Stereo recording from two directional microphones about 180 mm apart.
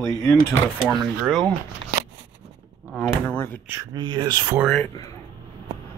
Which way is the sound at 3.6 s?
20° right (ahead or behind).